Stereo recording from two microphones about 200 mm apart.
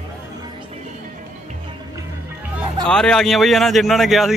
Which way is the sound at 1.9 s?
15° right (ahead or behind).